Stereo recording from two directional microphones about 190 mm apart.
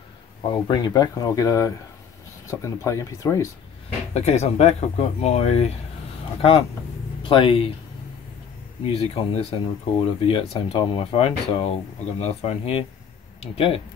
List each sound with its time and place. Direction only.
0.4 s speech: 25° left (ahead or behind)
4.1 s speech: 35° left (ahead or behind)
7.2 s speech: 25° left (ahead or behind)
8.8 s speech: 30° left (ahead or behind)